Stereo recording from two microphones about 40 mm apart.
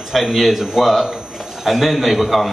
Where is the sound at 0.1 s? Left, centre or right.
Centre.